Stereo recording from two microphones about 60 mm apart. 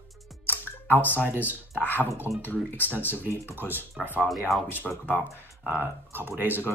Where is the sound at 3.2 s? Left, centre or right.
Right.